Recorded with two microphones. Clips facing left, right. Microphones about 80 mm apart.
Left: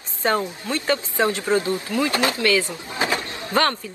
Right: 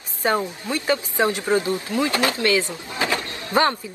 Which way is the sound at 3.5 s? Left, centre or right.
Centre.